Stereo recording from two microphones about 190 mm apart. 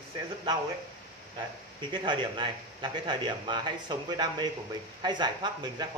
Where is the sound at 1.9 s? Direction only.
25° right (ahead or behind).